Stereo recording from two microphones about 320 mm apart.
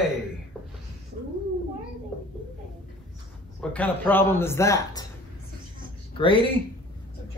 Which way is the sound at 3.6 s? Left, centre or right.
Centre.